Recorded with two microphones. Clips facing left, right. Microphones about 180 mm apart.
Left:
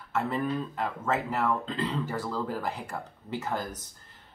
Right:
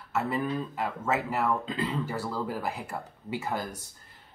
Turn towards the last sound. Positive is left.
turn(degrees=-10)  # may be behind; listen again after turning